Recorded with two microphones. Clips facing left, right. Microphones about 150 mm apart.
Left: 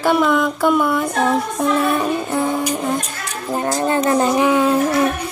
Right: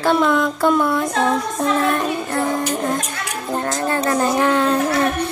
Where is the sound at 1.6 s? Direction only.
10° left (ahead or behind).